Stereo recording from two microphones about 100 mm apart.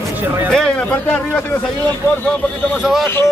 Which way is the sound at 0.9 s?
20° left (ahead or behind).